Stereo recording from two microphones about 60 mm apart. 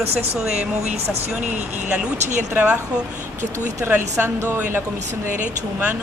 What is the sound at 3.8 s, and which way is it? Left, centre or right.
Speech, right.